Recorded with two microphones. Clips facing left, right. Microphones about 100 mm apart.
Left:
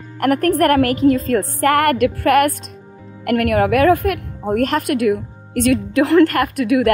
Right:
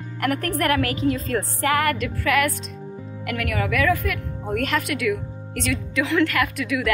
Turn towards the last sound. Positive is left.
turn(degrees=45)  # may be behind; listen again after turning